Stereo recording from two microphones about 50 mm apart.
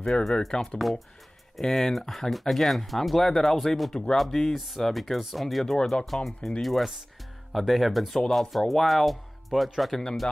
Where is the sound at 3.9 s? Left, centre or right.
Centre.